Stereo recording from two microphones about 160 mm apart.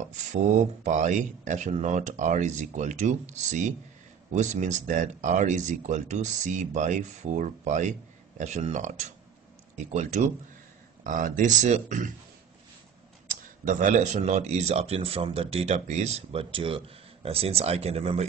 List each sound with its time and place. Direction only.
0.1 s speech: 50° right (ahead or behind)
13.3 s speech: 55° right (ahead or behind)